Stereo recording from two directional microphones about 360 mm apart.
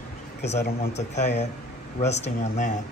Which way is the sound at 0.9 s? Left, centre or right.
Centre.